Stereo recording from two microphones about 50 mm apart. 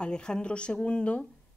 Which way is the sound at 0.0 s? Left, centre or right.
Centre.